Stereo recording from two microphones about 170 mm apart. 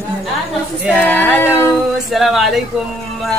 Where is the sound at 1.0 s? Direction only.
10° left (ahead or behind).